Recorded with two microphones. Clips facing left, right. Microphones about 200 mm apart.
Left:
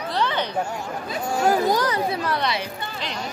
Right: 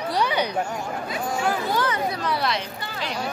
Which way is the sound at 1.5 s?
40° left (ahead or behind).